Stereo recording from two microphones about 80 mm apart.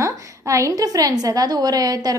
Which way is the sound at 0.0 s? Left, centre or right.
Right.